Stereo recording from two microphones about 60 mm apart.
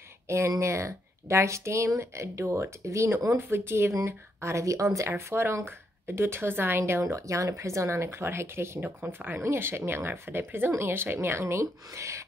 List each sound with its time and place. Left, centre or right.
0.5 s speech: right
3.3 s speech: right
6.9 s speech: right
8.8 s speech: right
9.4 s speech: right